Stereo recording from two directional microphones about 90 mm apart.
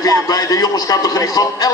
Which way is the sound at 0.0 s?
40° left (ahead or behind).